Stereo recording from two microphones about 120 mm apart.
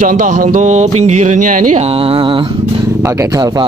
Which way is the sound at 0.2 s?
85° right.